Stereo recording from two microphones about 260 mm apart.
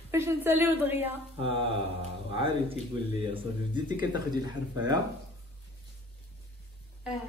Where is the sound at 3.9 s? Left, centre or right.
Centre.